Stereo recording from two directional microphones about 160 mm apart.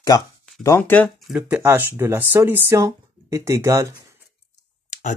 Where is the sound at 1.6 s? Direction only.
15° right (ahead or behind).